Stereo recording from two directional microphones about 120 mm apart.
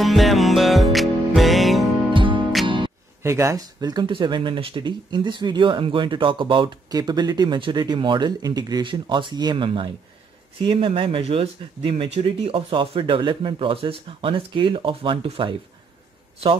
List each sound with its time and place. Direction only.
0.0 s music: centre (ahead or behind)
2.1 s music: 45° right (ahead or behind)
3.2 s speech: 25° right (ahead or behind); by 15.5 s 50° right (ahead or behind)